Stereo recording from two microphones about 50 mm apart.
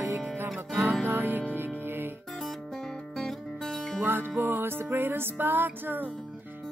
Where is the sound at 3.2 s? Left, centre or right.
Centre.